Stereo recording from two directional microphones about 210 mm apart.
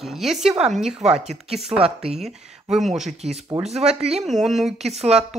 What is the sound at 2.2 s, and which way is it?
Speech, centre (ahead or behind).